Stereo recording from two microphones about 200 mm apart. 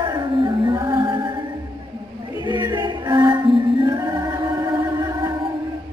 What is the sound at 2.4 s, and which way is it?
Music, 20° right (ahead or behind).